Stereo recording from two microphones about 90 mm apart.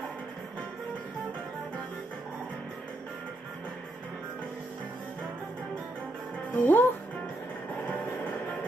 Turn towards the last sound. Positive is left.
turn(degrees=20)  # may be behind; listen again after turning